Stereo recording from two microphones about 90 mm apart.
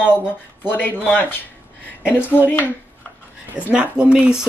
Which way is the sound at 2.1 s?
20° left (ahead or behind).